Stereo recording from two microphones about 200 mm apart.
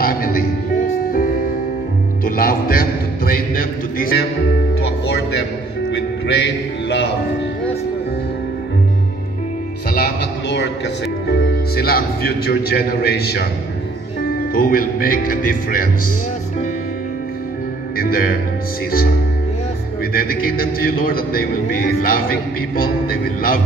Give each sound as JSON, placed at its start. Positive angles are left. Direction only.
{"t": 0.0, "sound": "music", "side_deg": 45}
{"t": 2.2, "sound": "a man's voice", "side_deg": 45}
{"t": 5.9, "sound": "speech", "side_deg": 60}
{"t": 9.9, "sound": "a man's voice", "side_deg": 55}
{"t": 14.5, "sound": "a man's voice", "side_deg": 45}
{"t": 17.9, "sound": "a man's voice", "side_deg": 45}